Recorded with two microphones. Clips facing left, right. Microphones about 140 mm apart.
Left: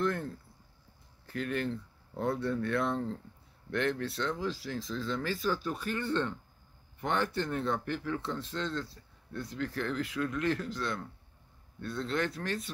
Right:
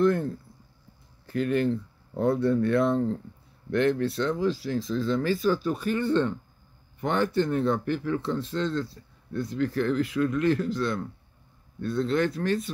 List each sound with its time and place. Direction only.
0.0 s speech: 15° right (ahead or behind)